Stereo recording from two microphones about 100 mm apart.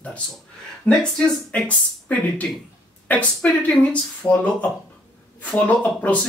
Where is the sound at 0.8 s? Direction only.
10° left (ahead or behind).